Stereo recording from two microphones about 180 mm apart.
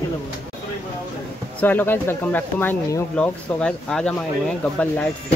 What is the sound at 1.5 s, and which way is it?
Speech, 10° left (ahead or behind).